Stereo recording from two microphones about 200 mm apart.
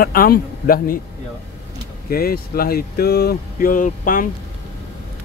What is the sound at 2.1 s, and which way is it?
Speech, 50° left (ahead or behind).